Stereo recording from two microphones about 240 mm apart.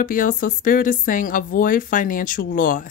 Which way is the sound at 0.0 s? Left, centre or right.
Left.